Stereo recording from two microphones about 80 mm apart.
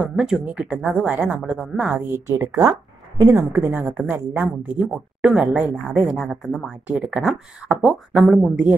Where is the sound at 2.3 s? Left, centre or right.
Right; by 8.3 s centre.